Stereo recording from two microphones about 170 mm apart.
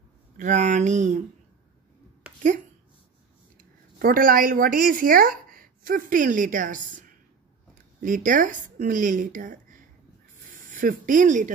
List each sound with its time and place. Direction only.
0.4 s a woman's voice: 45° right (ahead or behind)
2.3 s a sound: 5° right (ahead or behind)
3.5 s a woman's voice: 55° right (ahead or behind)